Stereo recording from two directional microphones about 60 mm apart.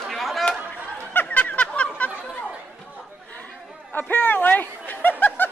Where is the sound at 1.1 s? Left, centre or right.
Left.